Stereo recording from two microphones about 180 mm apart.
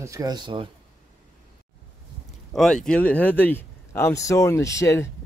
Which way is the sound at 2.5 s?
Centre (ahead or behind).